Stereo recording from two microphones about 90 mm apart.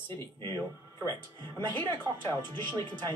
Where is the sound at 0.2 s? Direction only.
30° left (ahead or behind).